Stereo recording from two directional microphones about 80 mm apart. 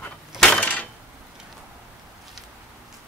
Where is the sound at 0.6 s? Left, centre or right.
Centre.